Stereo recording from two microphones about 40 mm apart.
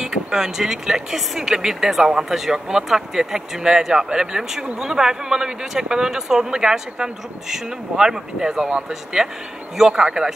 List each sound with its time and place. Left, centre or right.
0.0 s speech: centre
10.2 s speech: centre